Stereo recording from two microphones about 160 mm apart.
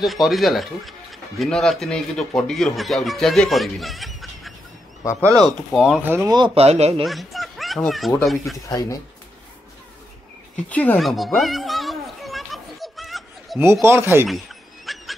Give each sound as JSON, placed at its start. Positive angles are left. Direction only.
{"t": 0.0, "sound": "speech", "side_deg": 0}
{"t": 6.0, "sound": "speech", "side_deg": -15}
{"t": 6.3, "sound": "speech", "side_deg": -35}
{"t": 7.1, "sound": "speech", "side_deg": 0}
{"t": 10.7, "sound": "children playing", "side_deg": 10}
{"t": 13.6, "sound": "speech", "side_deg": -15}
{"t": 14.2, "sound": "snicker", "side_deg": 0}